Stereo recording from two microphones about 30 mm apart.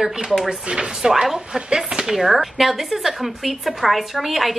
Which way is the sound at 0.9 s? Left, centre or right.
Right.